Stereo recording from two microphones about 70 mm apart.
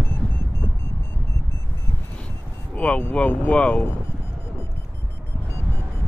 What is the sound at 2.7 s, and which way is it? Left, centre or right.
Speech, centre.